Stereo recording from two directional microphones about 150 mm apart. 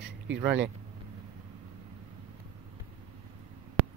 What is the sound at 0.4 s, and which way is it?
Speech, 10° right (ahead or behind).